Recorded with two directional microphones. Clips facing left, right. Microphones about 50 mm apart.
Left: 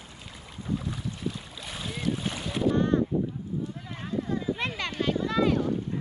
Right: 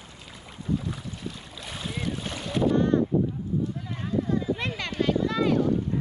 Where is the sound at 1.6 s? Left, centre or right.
Centre.